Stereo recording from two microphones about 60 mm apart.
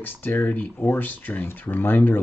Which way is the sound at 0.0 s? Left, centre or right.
Left.